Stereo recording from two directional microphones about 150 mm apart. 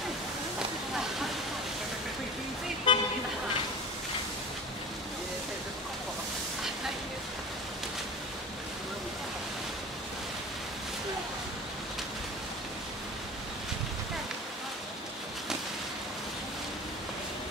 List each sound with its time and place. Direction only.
2.9 s vehicle: 30° left (ahead or behind)